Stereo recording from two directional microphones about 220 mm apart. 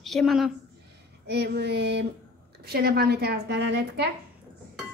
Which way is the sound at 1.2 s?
50° right (ahead or behind).